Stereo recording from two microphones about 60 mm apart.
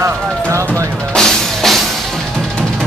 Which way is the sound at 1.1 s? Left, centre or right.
Centre.